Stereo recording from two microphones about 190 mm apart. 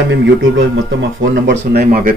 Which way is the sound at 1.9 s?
45° right (ahead or behind).